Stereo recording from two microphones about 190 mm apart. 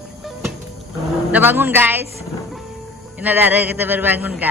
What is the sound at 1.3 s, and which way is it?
Speech, 10° right (ahead or behind).